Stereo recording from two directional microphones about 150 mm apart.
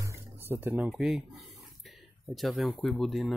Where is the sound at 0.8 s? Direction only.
Centre (ahead or behind).